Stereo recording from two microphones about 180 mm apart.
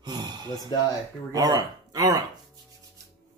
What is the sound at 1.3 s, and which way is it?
Speech, 20° right (ahead or behind).